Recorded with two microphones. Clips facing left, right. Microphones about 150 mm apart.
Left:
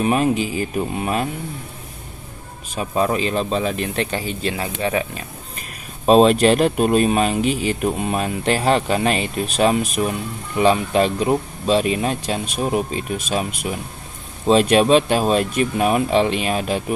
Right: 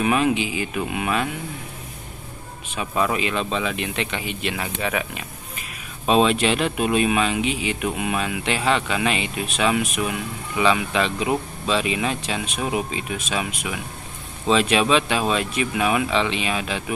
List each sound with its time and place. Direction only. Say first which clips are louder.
0.0 s speech: left 2 dB; 40° left (ahead or behind)
2.7 s speech: left 3 dB; 40° left (ahead or behind)